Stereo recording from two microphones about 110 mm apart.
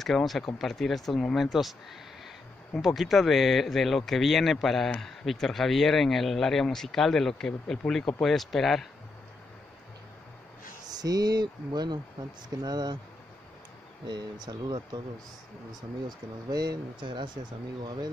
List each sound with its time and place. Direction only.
0.0 s speech: centre (ahead or behind)
10.9 s speech: 35° right (ahead or behind)
14.0 s speech: 40° right (ahead or behind)